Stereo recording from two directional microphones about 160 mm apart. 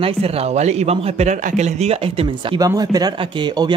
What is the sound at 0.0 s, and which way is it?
A man's voice, 40° right (ahead or behind).